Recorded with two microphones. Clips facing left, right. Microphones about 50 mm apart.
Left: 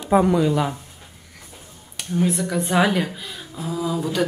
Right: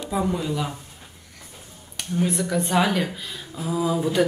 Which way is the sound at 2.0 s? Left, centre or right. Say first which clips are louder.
Left 2 dB; centre.